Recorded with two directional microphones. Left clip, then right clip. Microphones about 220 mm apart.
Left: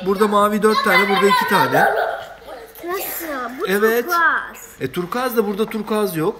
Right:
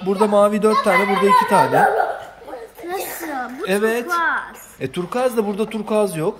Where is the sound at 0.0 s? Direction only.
10° right (ahead or behind).